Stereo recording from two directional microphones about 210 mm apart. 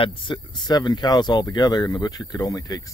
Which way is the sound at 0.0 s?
25° left (ahead or behind).